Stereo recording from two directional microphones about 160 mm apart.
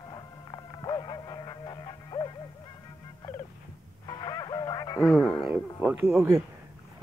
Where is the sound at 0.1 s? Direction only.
25° left (ahead or behind).